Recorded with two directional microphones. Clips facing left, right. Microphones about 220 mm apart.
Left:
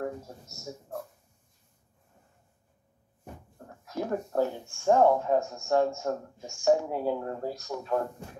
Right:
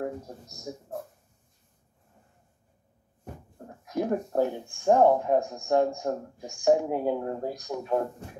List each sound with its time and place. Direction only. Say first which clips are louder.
0.0 s speech: right 1 dB; 15° right (ahead or behind)
3.5 s speech: right 4 dB; 15° right (ahead or behind)